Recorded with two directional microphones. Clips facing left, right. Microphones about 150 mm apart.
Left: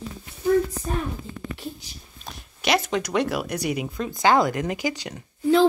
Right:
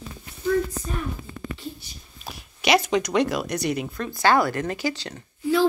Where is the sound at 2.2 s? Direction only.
5° right (ahead or behind).